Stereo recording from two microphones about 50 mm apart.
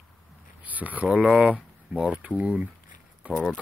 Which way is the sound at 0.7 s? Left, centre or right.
Right.